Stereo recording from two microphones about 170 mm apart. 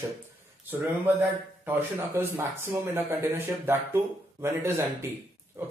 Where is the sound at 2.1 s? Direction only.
15° right (ahead or behind).